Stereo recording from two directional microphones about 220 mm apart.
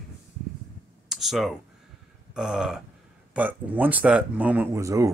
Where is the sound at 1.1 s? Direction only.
Centre (ahead or behind).